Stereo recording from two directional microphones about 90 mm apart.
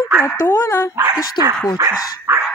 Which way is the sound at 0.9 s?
25° right (ahead or behind).